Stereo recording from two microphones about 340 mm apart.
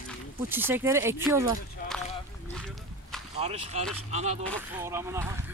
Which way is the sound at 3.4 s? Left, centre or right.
Centre.